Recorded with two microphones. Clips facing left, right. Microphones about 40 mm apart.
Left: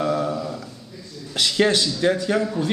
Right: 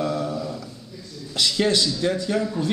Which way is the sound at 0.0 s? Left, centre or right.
Left.